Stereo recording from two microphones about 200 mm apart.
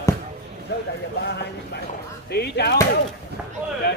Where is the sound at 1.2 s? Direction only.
55° left (ahead or behind).